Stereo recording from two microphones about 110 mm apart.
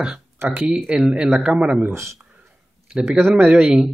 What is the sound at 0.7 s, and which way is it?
A man's voice, 10° right (ahead or behind).